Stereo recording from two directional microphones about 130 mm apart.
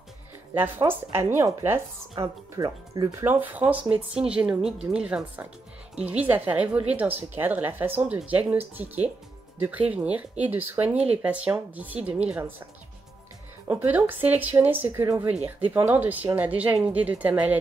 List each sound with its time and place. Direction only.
0.6 s a woman's voice: 15° right (ahead or behind)
13.7 s a woman's voice: 15° right (ahead or behind)